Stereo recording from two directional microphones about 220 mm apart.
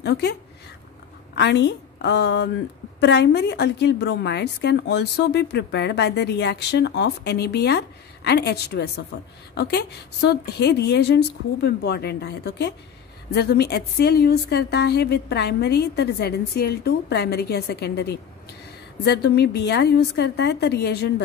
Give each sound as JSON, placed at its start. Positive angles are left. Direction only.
{"t": 0.0, "sound": "a woman's voice", "side_deg": 50}